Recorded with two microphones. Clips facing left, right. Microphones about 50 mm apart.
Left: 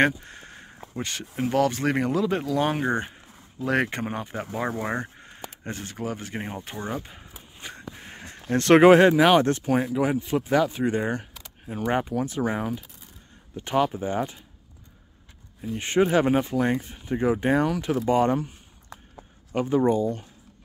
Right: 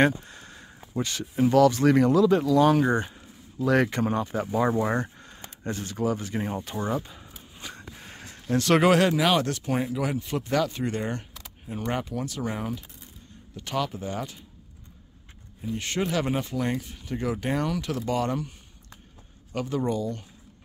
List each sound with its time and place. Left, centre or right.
0.2 s a sound: left
1.5 s speech: left
4.0 s speech: left
7.6 s a sound: left
8.8 s speech: left
9.7 s speech: centre
9.9 s speech: centre
15.8 s speech: left
19.5 s speech: left